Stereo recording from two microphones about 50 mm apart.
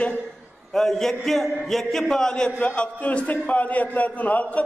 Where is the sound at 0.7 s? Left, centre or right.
Centre.